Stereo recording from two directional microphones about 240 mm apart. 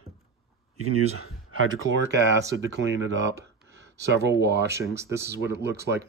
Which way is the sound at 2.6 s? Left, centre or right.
Right.